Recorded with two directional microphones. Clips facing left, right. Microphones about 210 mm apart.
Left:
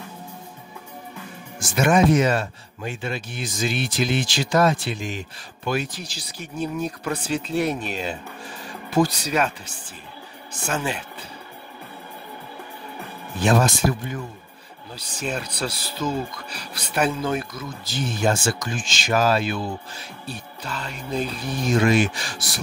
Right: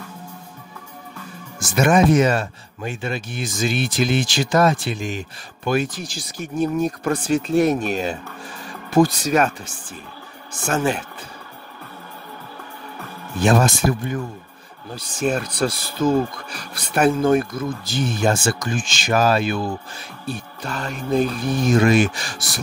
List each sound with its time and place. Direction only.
1.8 s speech: 45° right (ahead or behind)
10.7 s speech: 45° right (ahead or behind)
13.4 s speech: 50° right (ahead or behind)